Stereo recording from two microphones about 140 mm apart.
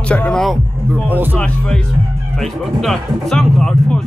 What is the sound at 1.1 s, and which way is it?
Speech, 10° right (ahead or behind).